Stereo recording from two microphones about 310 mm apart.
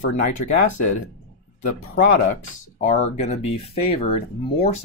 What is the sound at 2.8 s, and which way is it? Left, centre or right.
Speech, left.